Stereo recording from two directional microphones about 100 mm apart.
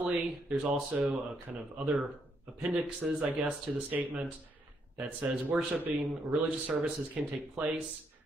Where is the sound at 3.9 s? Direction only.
15° right (ahead or behind).